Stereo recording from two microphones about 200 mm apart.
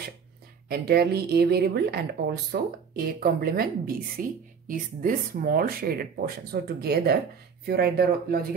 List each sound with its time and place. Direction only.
0.7 s a woman's voice: 50° right (ahead or behind)